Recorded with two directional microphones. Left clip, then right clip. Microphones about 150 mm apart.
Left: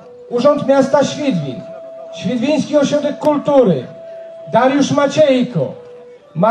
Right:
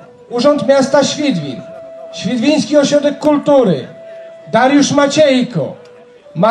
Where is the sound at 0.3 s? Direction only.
45° right (ahead or behind).